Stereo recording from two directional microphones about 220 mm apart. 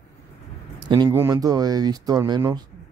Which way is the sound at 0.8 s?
20° right (ahead or behind).